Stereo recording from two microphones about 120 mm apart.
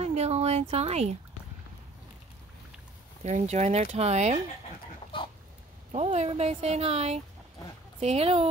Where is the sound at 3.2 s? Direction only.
75° right (ahead or behind).